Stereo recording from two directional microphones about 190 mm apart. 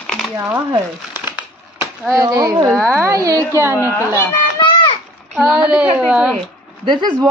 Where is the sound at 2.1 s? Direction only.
15° right (ahead or behind).